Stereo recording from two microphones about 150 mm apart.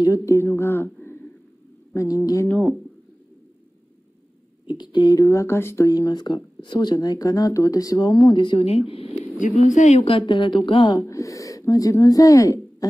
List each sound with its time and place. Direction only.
0.0 s speech: 20° left (ahead or behind)
2.4 s speech: 5° left (ahead or behind)
4.6 s speech: 30° left (ahead or behind)
9.6 s a woman's voice: 50° left (ahead or behind); by 11.0 s 35° left (ahead or behind)
11.0 s speech: 20° left (ahead or behind)